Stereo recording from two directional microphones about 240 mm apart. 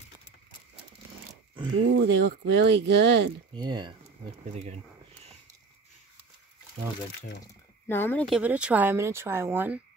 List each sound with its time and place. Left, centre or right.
1.8 s speech: right
3.5 s speech: centre
7.8 s speech: centre
8.4 s speech: centre